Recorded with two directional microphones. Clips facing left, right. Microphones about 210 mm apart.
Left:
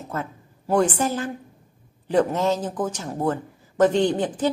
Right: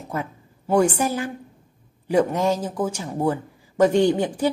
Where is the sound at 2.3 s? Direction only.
10° right (ahead or behind).